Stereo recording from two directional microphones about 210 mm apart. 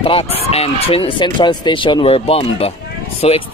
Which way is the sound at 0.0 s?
25° left (ahead or behind).